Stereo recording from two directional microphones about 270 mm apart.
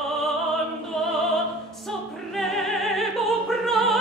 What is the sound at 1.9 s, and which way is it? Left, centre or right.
Opera, centre.